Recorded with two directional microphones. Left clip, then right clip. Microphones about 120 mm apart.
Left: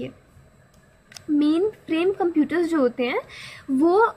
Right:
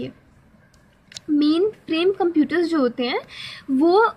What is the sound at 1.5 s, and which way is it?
A woman's voice, 25° right (ahead or behind).